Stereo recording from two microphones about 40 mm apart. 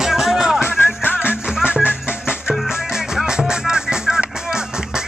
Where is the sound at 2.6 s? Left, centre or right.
Centre.